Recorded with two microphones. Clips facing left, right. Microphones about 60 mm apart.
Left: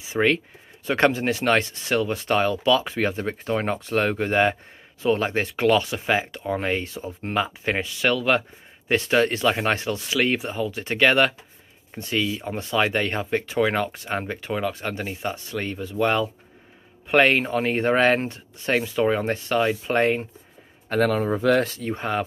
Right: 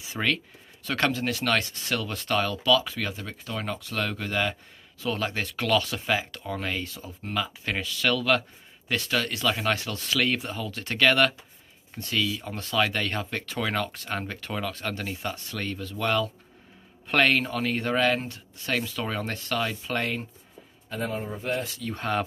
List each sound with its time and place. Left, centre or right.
0.1 s speech: left
9.9 s speech: centre
20.9 s a man's voice: left
21.6 s speech: left
21.9 s speech: centre